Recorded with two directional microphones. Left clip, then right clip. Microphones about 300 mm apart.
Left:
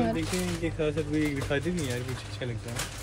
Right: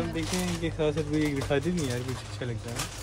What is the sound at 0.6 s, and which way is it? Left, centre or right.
Speech, right.